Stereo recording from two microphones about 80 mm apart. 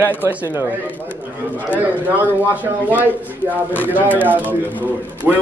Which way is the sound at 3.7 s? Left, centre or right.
Left.